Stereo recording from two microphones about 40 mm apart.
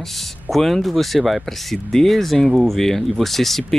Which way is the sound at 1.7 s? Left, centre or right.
Centre.